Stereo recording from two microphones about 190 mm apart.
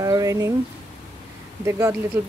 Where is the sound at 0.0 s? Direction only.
20° right (ahead or behind).